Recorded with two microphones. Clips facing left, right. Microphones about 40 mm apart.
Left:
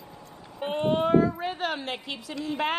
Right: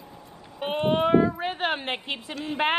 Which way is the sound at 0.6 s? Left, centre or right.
Right.